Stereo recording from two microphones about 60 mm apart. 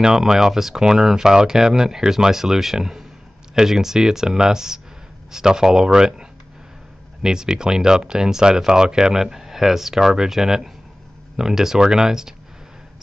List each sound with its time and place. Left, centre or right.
0.0 s speech: centre